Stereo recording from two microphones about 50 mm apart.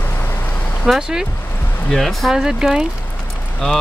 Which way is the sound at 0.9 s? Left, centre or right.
Centre.